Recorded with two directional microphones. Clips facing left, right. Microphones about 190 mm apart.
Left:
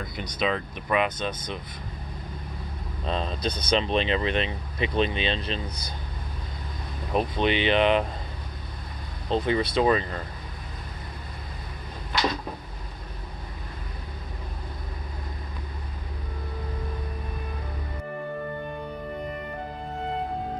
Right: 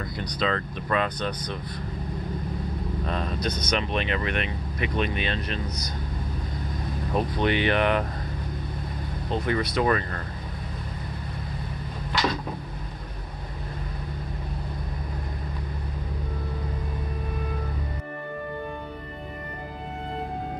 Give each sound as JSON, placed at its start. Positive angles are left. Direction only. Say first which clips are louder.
{"t": 0.2, "sound": "speech", "louder": "even", "side_deg": 20}
{"t": 3.1, "sound": "speech", "louder": "left 2 dB", "side_deg": 25}
{"t": 7.1, "sound": "speech", "louder": "left 1 dB", "side_deg": 20}
{"t": 9.3, "sound": "speech", "louder": "left 2 dB", "side_deg": 25}